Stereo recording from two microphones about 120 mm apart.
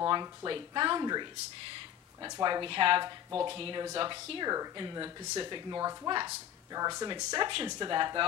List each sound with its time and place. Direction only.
0.0 s speech: 30° right (ahead or behind)
2.2 s speech: 35° right (ahead or behind)